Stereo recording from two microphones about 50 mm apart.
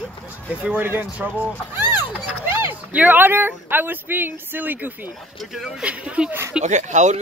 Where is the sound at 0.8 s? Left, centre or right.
Right.